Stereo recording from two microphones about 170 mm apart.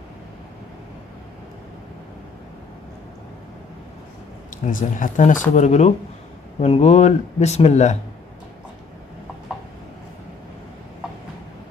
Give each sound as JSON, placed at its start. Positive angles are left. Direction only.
{"t": 4.5, "sound": "speech", "side_deg": 50}